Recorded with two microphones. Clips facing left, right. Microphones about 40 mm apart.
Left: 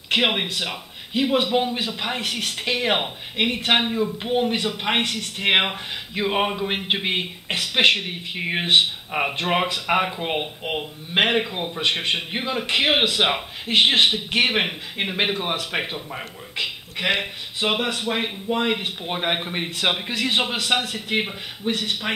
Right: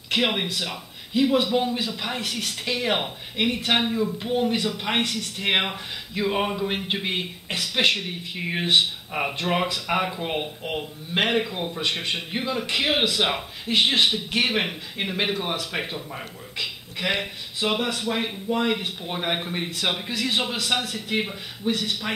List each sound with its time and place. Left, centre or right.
0.1 s a man's voice: left